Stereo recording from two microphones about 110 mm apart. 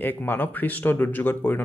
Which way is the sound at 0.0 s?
20° left (ahead or behind).